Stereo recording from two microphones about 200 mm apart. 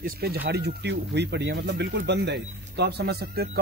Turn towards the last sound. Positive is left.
turn(degrees=-50)  # may be behind; listen again after turning